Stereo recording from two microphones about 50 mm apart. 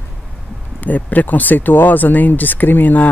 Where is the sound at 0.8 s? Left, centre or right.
Left.